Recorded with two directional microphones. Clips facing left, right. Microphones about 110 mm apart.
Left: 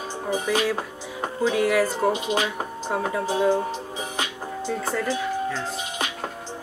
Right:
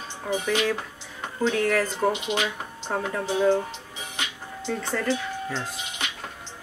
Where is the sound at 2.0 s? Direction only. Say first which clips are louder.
Left 2 dB; 35° left (ahead or behind).